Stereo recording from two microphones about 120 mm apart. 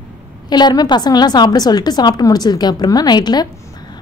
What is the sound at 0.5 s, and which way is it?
A woman's voice, 35° left (ahead or behind).